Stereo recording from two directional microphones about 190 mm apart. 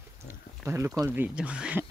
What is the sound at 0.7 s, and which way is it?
Speech, 15° right (ahead or behind).